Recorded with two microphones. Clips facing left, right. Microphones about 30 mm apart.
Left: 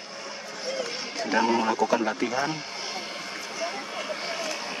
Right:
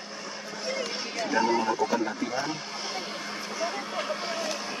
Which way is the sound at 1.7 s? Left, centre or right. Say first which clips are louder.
Left 3 dB; left.